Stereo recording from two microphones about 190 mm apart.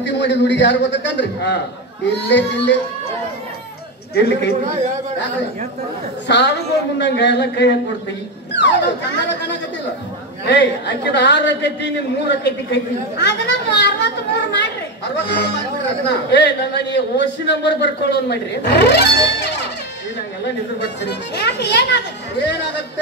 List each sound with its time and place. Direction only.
0.0 s a man's voice: 65° left (ahead or behind)
4.1 s a man's voice: 60° left (ahead or behind)
6.2 s a man's voice: 65° left (ahead or behind)
10.4 s a man's voice: 65° left (ahead or behind)
21.0 s a man's voice: 65° left (ahead or behind)